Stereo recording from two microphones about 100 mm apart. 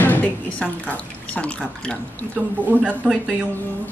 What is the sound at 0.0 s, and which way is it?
Speech, 15° left (ahead or behind).